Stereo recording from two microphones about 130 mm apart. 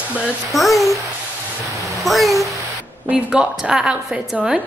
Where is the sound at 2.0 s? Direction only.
Centre (ahead or behind).